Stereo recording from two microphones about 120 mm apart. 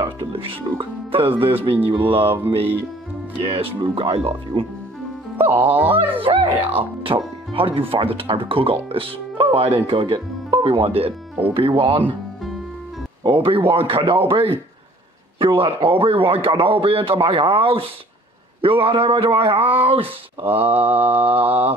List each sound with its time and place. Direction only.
0.0 s a man's voice: 50° right (ahead or behind)
5.5 s speech: 15° right (ahead or behind)
6.2 s a man's voice: 50° right (ahead or behind)
13.2 s a man's voice: 45° right (ahead or behind)